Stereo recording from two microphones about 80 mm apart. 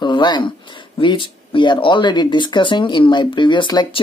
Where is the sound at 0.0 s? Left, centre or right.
Left.